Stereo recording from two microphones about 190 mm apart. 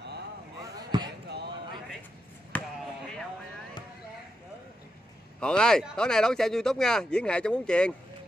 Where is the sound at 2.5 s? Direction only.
5° left (ahead or behind).